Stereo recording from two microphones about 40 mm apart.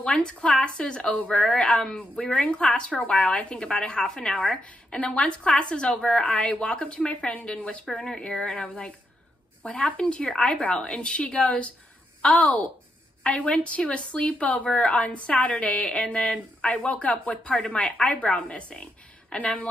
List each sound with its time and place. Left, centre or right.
0.0 s a woman's voice: left
4.9 s speech: left
6.2 s a woman's voice: left
7.9 s speech: centre
8.5 s a woman's voice: left